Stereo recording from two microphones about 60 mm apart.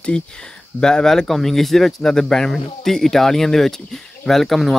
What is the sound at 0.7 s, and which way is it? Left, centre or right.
Speech, centre.